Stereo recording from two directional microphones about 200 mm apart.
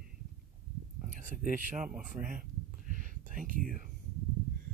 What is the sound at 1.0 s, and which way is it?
Speech, 40° right (ahead or behind).